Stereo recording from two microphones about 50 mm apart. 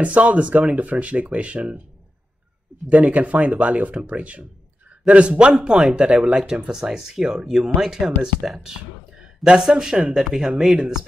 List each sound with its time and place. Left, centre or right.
0.0 s speech: right
2.9 s speech: right; by 11.1 s centre